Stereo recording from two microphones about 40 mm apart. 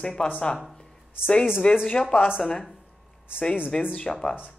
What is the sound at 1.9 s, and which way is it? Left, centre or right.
Speech, left.